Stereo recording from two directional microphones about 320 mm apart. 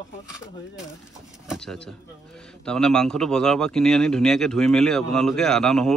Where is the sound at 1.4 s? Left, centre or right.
Centre.